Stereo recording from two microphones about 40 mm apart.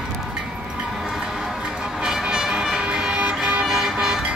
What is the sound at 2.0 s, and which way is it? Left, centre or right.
Vehicle, centre.